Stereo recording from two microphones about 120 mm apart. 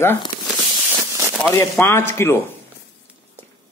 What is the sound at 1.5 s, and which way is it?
Speech, 25° left (ahead or behind).